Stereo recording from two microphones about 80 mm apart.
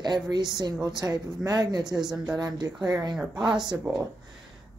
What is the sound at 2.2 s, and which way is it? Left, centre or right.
Speech, right.